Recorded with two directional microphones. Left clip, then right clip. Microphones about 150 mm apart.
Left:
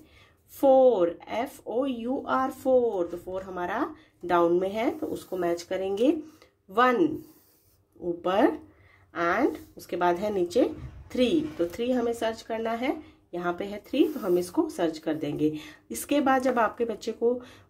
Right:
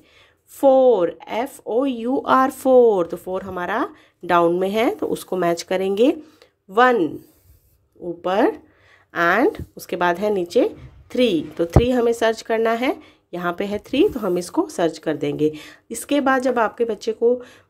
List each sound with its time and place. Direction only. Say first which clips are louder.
0.6 s speech: right 5 dB; 35° right (ahead or behind)
6.7 s speech: right 7 dB; 35° right (ahead or behind)
8.2 s speech: right 5 dB; 30° right (ahead or behind)
9.1 s speech: right 8 dB; 45° right (ahead or behind); by 17.6 s 30° right (ahead or behind)